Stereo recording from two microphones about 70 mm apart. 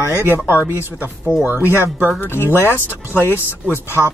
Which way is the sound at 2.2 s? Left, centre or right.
Left.